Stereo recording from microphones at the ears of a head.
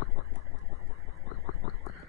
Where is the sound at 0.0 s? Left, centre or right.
Left.